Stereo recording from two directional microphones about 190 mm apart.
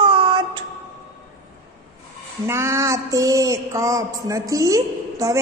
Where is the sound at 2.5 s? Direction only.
15° right (ahead or behind).